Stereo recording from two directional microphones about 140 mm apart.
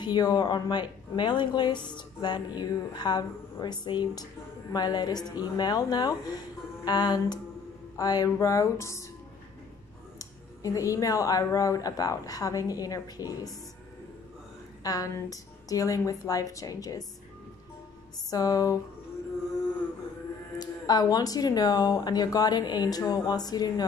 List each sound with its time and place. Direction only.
0.0 s speech: 30° left (ahead or behind)
10.1 s speech: 25° left (ahead or behind)
14.8 s speech: 25° left (ahead or behind)
18.3 s speech: 25° left (ahead or behind)
20.5 s speech: 30° left (ahead or behind)